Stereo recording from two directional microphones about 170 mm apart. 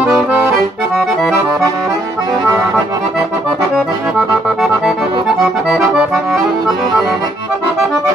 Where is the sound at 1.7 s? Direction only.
20° right (ahead or behind).